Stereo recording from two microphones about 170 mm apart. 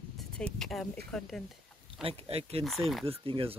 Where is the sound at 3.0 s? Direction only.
35° right (ahead or behind).